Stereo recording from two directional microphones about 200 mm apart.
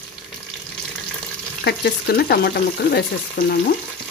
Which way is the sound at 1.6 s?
55° left (ahead or behind).